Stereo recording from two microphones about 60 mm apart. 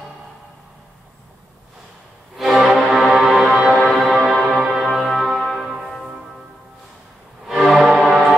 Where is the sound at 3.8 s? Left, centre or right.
Centre.